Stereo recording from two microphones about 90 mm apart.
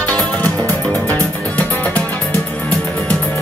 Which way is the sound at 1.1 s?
15° left (ahead or behind).